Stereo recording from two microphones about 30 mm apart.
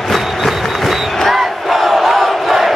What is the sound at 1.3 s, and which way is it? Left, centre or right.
Crowd, centre.